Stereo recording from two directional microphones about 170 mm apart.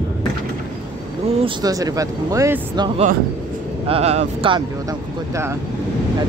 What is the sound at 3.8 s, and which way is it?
Speech, 35° right (ahead or behind).